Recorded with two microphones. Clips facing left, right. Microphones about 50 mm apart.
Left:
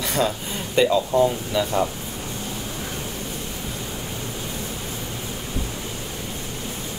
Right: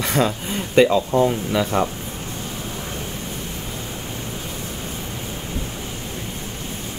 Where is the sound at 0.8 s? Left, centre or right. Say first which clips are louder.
Right 2 dB; right.